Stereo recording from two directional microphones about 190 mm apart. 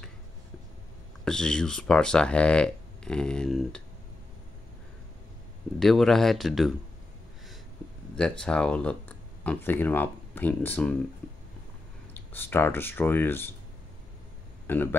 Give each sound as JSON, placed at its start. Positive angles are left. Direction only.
{"t": 1.2, "sound": "speech", "side_deg": 5}
{"t": 5.8, "sound": "speech", "side_deg": 0}
{"t": 8.2, "sound": "speech", "side_deg": 5}
{"t": 12.1, "sound": "speech", "side_deg": 10}
{"t": 14.7, "sound": "speech", "side_deg": 10}